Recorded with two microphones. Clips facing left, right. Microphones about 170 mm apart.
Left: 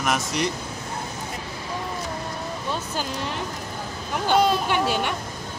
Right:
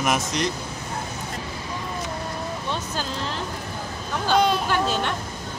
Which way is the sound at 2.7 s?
15° left (ahead or behind).